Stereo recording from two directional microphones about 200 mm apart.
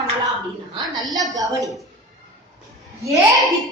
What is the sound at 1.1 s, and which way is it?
Speech, 15° right (ahead or behind).